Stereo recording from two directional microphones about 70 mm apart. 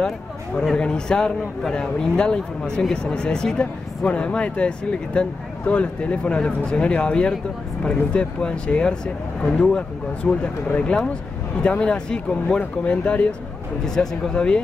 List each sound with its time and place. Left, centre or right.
0.6 s a man's voice: centre